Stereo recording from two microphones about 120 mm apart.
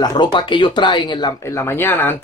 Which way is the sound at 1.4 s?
20° left (ahead or behind).